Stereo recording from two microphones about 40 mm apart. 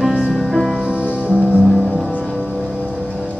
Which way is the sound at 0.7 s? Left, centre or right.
Right.